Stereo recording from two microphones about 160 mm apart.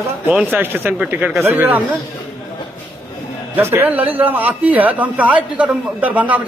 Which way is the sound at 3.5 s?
15° right (ahead or behind).